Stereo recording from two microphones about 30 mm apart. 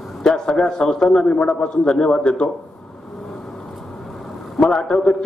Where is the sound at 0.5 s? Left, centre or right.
Left.